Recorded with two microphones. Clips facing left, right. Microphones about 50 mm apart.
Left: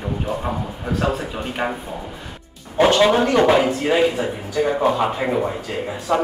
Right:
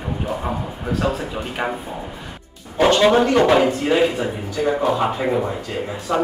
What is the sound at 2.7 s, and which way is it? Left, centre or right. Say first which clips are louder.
A man's voice: even; centre.